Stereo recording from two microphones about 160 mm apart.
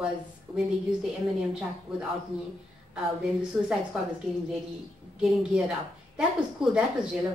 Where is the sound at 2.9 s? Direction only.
5° right (ahead or behind).